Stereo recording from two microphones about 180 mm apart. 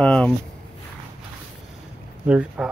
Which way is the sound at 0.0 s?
10° left (ahead or behind).